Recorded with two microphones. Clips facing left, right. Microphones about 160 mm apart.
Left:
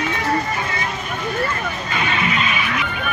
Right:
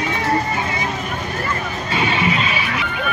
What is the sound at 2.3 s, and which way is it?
Music, 30° right (ahead or behind).